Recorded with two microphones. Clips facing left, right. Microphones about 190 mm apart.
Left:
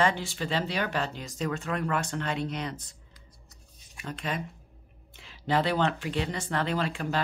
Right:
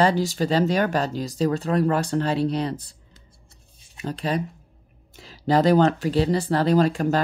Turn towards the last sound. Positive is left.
turn(degrees=-40)  # may be behind; listen again after turning